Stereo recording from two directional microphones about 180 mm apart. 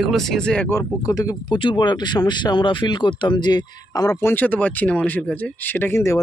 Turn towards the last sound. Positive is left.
turn(degrees=15)  # may be behind; listen again after turning